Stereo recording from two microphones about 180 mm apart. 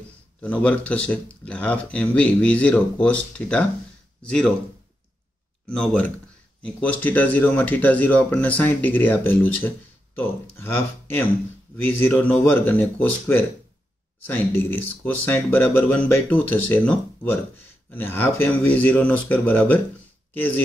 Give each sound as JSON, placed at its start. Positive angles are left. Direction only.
{"t": 0.4, "sound": "speech", "side_deg": 5}
{"t": 5.7, "sound": "speech", "side_deg": 5}
{"t": 14.2, "sound": "speech", "side_deg": 10}